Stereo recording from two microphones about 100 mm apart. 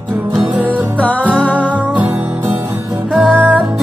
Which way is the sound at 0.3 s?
15° right (ahead or behind).